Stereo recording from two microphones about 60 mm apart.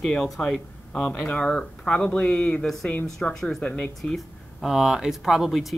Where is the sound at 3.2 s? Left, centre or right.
Centre.